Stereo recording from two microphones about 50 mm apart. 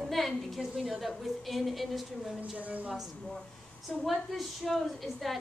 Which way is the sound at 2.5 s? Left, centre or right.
Right.